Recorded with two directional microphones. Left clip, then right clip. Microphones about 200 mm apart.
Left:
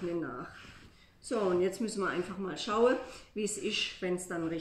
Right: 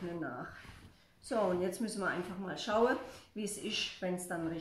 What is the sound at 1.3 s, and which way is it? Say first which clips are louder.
Speech: left 3 dB; 10° right (ahead or behind).